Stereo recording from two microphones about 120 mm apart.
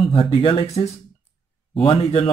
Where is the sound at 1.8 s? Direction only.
50° left (ahead or behind).